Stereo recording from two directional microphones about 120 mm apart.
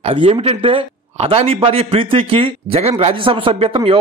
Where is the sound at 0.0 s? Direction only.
50° right (ahead or behind).